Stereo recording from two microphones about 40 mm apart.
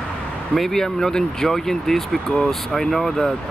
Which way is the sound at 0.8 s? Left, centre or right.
Centre.